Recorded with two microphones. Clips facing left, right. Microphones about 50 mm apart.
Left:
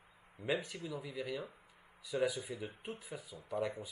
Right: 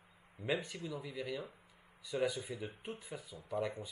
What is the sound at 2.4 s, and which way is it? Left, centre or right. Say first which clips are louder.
Speech: even; left.